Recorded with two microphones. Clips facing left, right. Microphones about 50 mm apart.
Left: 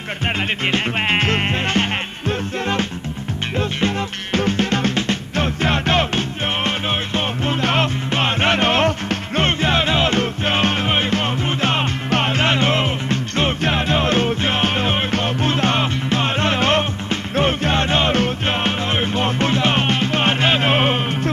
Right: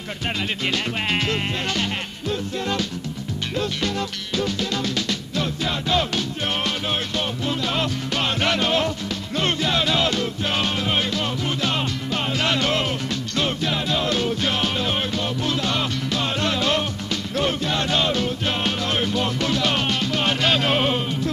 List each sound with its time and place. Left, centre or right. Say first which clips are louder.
0.7 s music: left 5 dB; left
12.4 s music: left 1 dB; left